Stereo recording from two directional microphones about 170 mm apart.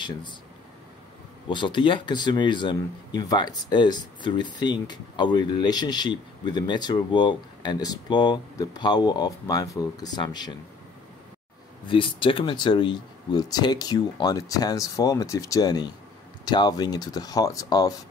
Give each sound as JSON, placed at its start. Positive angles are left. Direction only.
{"t": 0.0, "sound": "speech", "side_deg": 25}
{"t": 1.5, "sound": "speech", "side_deg": 30}
{"t": 11.9, "sound": "speech", "side_deg": 30}